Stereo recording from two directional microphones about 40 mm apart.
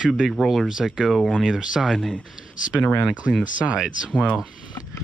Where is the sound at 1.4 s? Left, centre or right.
Centre.